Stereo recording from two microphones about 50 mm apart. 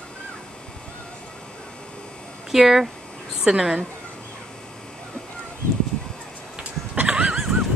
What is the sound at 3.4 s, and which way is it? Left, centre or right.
Speech, centre.